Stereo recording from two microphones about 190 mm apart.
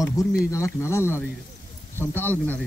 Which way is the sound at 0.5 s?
15° left (ahead or behind).